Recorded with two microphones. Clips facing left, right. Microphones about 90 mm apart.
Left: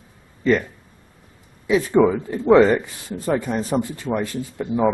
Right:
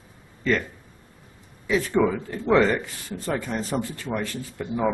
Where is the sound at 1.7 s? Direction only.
15° left (ahead or behind).